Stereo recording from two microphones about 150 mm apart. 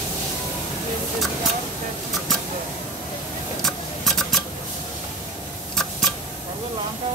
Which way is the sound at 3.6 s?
Centre (ahead or behind).